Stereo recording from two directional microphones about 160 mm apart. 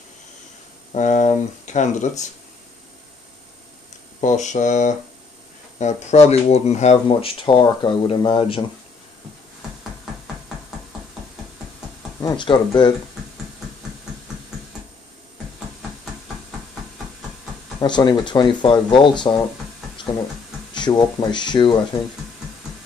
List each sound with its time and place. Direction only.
0.9 s speech: 50° left (ahead or behind)
4.2 s speech: 50° left (ahead or behind); by 8.6 s 35° left (ahead or behind)
12.2 s speech: 25° left (ahead or behind)
17.7 s speech: 30° left (ahead or behind)
20.7 s speech: 30° left (ahead or behind)